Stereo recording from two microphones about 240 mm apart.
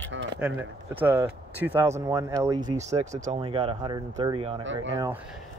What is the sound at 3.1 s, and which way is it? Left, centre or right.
Speech, right.